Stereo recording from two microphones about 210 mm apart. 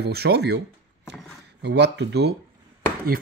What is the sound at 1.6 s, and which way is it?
Speech, 55° right (ahead or behind).